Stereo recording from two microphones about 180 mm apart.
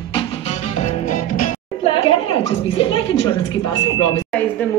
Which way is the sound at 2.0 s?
30° left (ahead or behind).